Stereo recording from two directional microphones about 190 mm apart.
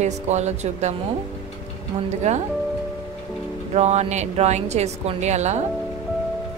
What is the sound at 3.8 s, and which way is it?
Speech, 35° right (ahead or behind).